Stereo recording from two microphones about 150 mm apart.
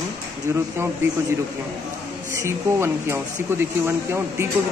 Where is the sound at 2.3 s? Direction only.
20° right (ahead or behind).